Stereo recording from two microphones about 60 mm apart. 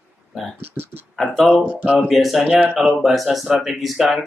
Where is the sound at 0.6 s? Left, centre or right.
Right.